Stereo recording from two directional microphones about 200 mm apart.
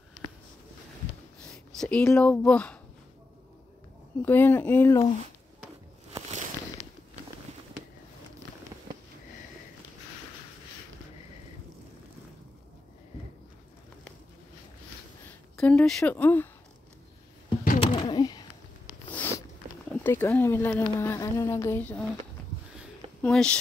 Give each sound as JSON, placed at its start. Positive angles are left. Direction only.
{"t": 1.8, "sound": "speech", "side_deg": 5}
{"t": 4.2, "sound": "speech", "side_deg": 10}
{"t": 6.8, "sound": "walk", "side_deg": -20}
{"t": 15.5, "sound": "speech", "side_deg": 5}
{"t": 17.7, "sound": "a sound", "side_deg": 25}
{"t": 19.0, "sound": "a sound", "side_deg": 10}
{"t": 20.0, "sound": "speech", "side_deg": 10}
{"t": 23.2, "sound": "speech", "side_deg": 5}